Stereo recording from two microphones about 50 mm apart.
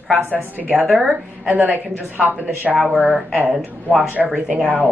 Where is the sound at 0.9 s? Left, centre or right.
Centre.